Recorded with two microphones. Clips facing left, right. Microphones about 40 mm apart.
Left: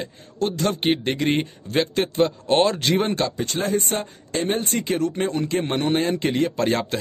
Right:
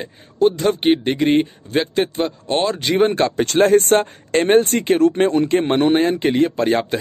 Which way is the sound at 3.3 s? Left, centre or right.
Right.